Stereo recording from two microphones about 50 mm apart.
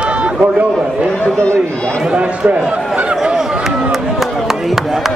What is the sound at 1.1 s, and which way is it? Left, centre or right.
Speech, left.